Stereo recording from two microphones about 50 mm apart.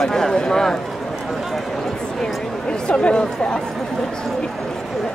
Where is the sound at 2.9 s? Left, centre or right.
Centre.